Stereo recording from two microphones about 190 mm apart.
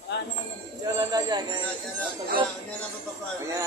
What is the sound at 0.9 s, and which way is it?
Speech, 20° right (ahead or behind).